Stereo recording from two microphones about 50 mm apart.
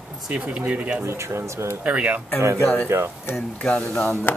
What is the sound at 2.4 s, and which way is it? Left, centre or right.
Speech, right.